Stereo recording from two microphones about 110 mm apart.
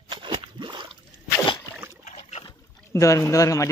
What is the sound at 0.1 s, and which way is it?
Squish, 50° right (ahead or behind).